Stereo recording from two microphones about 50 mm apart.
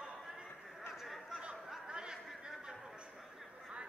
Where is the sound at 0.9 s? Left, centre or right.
Centre.